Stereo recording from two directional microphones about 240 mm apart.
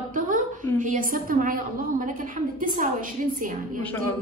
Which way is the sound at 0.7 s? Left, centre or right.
Right.